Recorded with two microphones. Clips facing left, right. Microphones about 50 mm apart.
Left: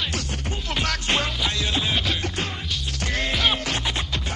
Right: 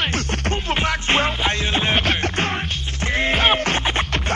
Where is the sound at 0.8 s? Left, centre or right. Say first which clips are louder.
Right 4 dB; right.